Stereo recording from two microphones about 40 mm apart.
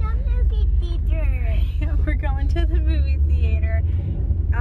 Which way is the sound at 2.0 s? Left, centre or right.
Centre.